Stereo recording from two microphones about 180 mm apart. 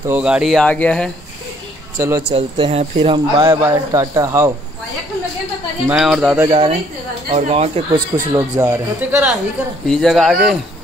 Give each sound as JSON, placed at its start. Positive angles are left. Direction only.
{"t": 0.0, "sound": "speech", "side_deg": -10}
{"t": 2.0, "sound": "speech", "side_deg": -15}
{"t": 2.3, "sound": "speech", "side_deg": -30}
{"t": 3.4, "sound": "speech", "side_deg": -20}
{"t": 5.9, "sound": "speech", "side_deg": -5}
{"t": 6.5, "sound": "speech", "side_deg": -30}
{"t": 7.9, "sound": "speech", "side_deg": -15}
{"t": 9.8, "sound": "speech", "side_deg": 0}